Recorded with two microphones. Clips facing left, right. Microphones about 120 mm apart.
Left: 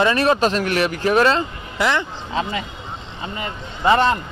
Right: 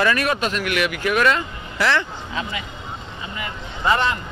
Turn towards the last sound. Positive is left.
turn(degrees=35)  # may be behind; listen again after turning